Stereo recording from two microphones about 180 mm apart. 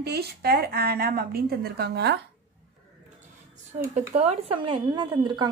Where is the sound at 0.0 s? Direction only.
60° right (ahead or behind).